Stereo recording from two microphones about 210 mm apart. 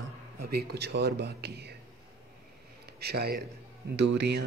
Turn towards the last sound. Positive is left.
turn(degrees=-55)  # may be behind; listen again after turning